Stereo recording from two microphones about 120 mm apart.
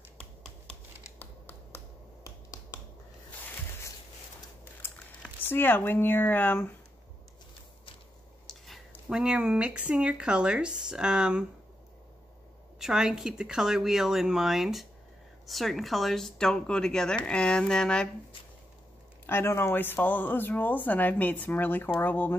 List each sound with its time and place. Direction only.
0.2 s hands: 10° left (ahead or behind)
1.2 s finger snapping: 20° left (ahead or behind)
4.8 s a sound: 15° left (ahead or behind)
5.5 s speech: 15° left (ahead or behind)
8.5 s a sound: centre (ahead or behind)
8.9 s speech: 5° right (ahead or behind)
12.7 s speech: 5° right (ahead or behind)
19.2 s speech: 20° left (ahead or behind)